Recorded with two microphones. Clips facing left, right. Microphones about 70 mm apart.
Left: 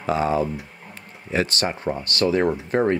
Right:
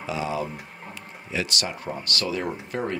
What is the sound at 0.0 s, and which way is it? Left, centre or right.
Speech, left.